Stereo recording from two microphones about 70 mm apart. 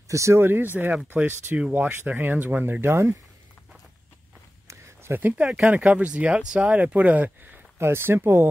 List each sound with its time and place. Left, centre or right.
0.1 s speech: right
0.4 s speech: right
5.4 s speech: centre
7.8 s speech: right